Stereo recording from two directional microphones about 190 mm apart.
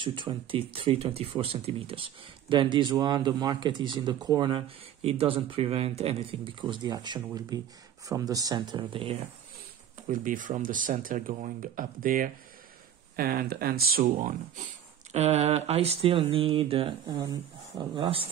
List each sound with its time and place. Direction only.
0.0 s speech: 25° right (ahead or behind)
10.0 s speech: 45° right (ahead or behind); by 18.3 s 30° right (ahead or behind)